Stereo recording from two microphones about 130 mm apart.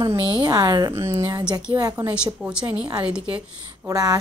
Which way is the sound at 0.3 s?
30° right (ahead or behind).